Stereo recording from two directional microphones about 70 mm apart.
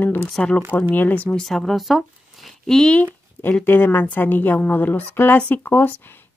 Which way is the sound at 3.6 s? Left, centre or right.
Left.